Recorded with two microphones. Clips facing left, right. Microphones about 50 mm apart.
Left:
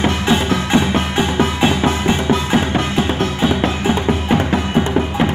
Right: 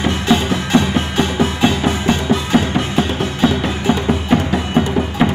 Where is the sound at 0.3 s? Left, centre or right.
Left.